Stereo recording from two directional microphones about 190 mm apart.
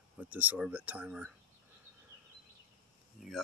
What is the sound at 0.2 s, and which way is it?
Speech, 10° right (ahead or behind).